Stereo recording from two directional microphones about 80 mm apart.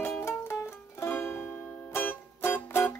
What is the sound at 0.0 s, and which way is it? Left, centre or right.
Music, left.